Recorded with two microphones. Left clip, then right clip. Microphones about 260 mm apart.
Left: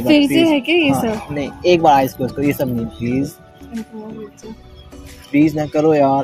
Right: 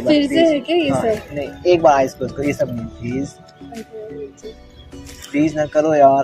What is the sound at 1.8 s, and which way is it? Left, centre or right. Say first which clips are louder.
Speech: left 1 dB; left.